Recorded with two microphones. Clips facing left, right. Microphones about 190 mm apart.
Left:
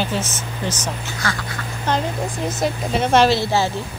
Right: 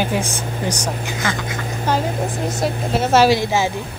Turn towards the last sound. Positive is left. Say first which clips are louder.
# right 1 dB
turn(degrees=-15)  # may be behind; listen again after turning